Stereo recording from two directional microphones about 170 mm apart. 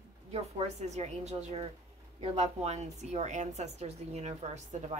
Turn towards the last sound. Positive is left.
turn(degrees=-40)  # may be behind; listen again after turning